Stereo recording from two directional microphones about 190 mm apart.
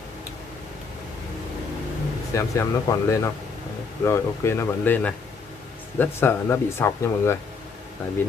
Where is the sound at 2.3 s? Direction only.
15° left (ahead or behind).